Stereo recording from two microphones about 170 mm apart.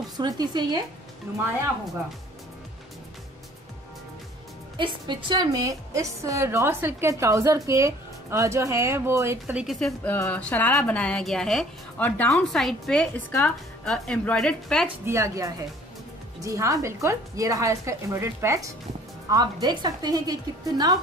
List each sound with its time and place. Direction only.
0.2 s a woman's voice: 25° right (ahead or behind)
1.3 s a woman's voice: 15° right (ahead or behind)
4.7 s a woman's voice: 30° right (ahead or behind); by 14.9 s 5° left (ahead or behind)
15.0 s a woman's voice: 15° right (ahead or behind)